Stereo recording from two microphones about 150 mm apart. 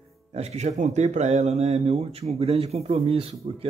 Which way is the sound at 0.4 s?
50° right (ahead or behind).